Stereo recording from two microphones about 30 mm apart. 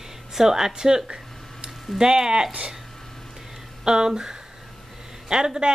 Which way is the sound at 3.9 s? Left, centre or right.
Right.